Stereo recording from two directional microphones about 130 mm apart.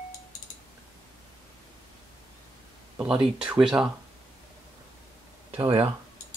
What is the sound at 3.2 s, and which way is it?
Speech, 5° right (ahead or behind).